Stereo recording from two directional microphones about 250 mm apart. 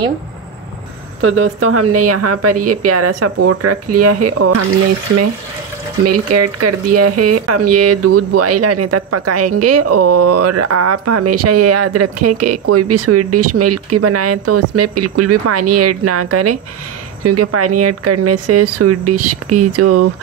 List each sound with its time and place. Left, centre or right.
1.2 s speech: right
6.0 s speech: right